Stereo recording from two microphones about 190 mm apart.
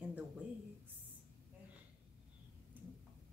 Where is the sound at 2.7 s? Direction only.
10° right (ahead or behind).